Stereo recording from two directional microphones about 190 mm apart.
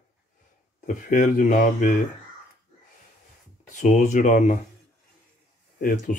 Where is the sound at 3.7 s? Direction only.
40° left (ahead or behind).